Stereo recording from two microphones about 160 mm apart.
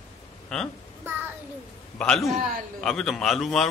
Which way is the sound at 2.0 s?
5° left (ahead or behind).